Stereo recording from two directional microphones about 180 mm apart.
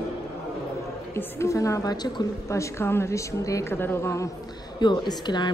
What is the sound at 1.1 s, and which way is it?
A woman's voice, 15° left (ahead or behind).